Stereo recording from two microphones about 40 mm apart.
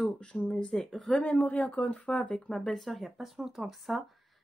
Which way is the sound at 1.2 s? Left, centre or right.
Left.